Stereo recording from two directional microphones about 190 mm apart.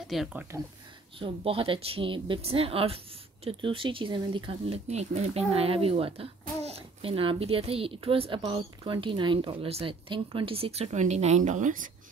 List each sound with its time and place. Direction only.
0.1 s speech: 5° right (ahead or behind)
1.2 s speech: 30° right (ahead or behind)